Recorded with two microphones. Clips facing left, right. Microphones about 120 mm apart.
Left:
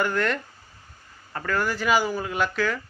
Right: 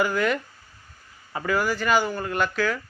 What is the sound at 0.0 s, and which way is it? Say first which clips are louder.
Speech: right 2 dB; 5° right (ahead or behind).